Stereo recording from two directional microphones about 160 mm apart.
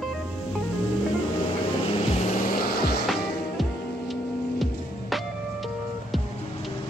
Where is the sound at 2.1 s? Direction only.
45° left (ahead or behind); by 3.0 s 70° left (ahead or behind).